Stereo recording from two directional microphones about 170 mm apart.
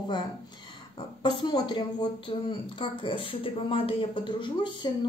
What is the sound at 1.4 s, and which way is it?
A woman's voice, 25° left (ahead or behind).